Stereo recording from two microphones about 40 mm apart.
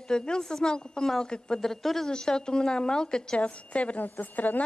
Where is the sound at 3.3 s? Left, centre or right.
Left.